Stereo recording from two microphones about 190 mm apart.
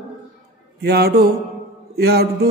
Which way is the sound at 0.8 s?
55° right (ahead or behind).